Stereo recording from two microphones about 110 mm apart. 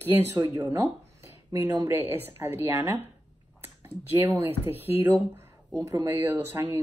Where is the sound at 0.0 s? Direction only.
20° right (ahead or behind).